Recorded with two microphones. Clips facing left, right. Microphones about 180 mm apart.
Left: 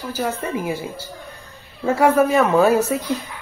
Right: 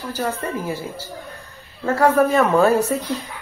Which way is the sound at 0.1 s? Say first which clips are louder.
Left 1 dB; 10° left (ahead or behind).